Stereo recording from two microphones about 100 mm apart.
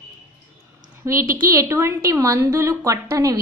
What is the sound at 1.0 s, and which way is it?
A woman's voice, 30° right (ahead or behind).